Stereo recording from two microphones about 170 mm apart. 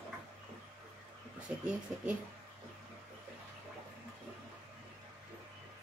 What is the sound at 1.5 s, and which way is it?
Speech, 10° right (ahead or behind).